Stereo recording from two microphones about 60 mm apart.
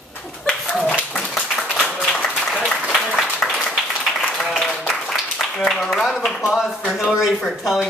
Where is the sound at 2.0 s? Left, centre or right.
Centre.